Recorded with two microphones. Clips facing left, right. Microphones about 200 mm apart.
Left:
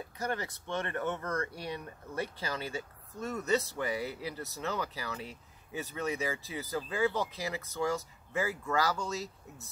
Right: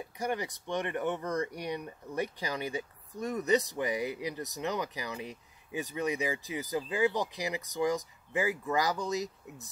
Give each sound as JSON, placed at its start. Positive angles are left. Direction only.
{"t": 0.0, "sound": "speech", "side_deg": -15}